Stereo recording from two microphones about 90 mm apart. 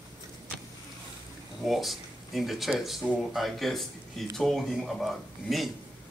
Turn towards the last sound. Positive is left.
turn(degrees=0)  # may be behind; listen again after turning